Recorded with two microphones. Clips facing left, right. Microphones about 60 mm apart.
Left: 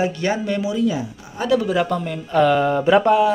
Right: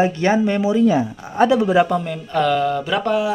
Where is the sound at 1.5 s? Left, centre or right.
Centre.